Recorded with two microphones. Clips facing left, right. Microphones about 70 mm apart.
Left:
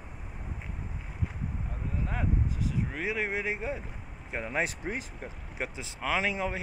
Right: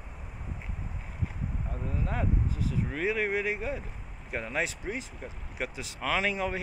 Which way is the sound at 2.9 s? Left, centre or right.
Centre.